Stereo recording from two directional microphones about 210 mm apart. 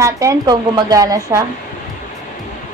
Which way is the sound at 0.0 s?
15° right (ahead or behind).